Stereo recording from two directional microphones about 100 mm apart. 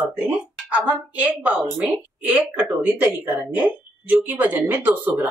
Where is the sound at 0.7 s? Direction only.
15° right (ahead or behind).